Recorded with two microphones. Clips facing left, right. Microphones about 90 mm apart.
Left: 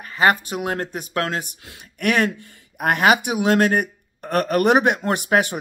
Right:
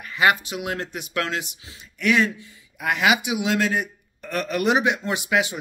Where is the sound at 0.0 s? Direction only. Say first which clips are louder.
Left 2 dB; 40° left (ahead or behind).